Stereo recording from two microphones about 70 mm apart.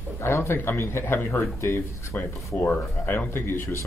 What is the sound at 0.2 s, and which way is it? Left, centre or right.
Speech, left.